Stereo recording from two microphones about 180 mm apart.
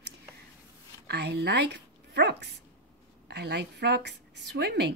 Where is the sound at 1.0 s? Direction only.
70° right (ahead or behind).